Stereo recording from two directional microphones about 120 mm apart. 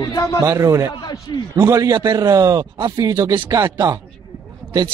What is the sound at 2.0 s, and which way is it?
Speech, 40° right (ahead or behind).